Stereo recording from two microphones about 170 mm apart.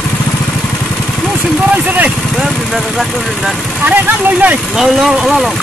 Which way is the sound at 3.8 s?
10° right (ahead or behind).